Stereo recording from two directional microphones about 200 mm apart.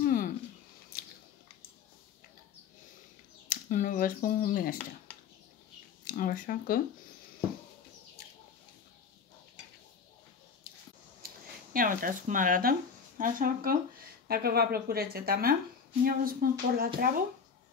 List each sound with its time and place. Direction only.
0.0 s a sound: 45° left (ahead or behind)
0.9 s biting: 50° left (ahead or behind)
3.4 s speech: 40° left (ahead or behind)
6.0 s speech: 45° left (ahead or behind)
11.7 s a woman's voice: 45° right (ahead or behind)